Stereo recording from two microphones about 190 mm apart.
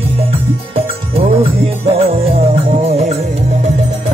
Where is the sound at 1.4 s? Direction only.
30° right (ahead or behind).